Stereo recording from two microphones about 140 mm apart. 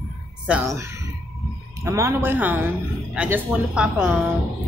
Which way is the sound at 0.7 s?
20° right (ahead or behind).